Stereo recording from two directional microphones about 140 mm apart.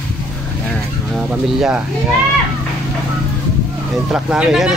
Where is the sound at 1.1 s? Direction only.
5° right (ahead or behind).